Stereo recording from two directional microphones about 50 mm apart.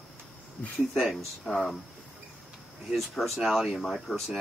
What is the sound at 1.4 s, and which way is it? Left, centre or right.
Speech, centre.